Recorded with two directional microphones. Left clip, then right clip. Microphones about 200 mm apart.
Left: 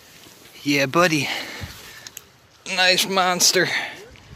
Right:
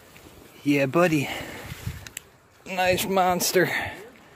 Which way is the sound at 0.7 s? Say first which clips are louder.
Left 3 dB; 5° right (ahead or behind).